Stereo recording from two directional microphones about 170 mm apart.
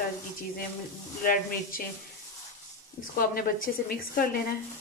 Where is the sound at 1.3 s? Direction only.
55° left (ahead or behind).